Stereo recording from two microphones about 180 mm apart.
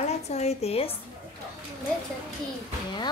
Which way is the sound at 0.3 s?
35° left (ahead or behind).